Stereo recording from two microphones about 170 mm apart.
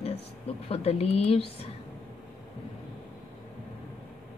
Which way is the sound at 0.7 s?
35° left (ahead or behind).